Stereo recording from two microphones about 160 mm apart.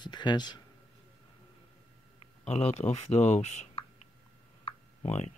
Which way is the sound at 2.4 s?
40° left (ahead or behind).